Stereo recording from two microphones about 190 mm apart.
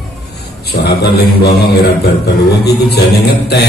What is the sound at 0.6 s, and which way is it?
Mantra, 60° left (ahead or behind).